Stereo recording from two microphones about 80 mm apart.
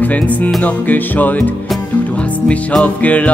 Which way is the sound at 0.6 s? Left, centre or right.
Left.